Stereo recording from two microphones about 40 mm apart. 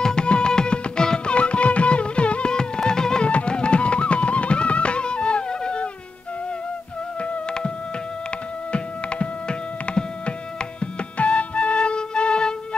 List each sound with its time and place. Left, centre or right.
0.0 s music: left
3.3 s music: left
7.2 s music: left
8.7 s music: left